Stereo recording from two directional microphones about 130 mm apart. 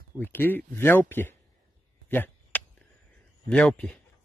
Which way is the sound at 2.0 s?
15° left (ahead or behind).